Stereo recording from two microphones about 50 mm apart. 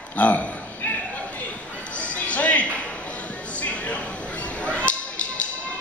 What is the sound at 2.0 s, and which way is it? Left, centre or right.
Basketball bounce, left.